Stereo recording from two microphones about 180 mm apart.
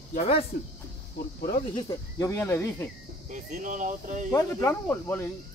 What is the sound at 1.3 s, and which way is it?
Speech, 55° left (ahead or behind).